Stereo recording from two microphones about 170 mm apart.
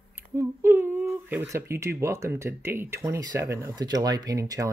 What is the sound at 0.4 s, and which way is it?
Speech, 15° right (ahead or behind).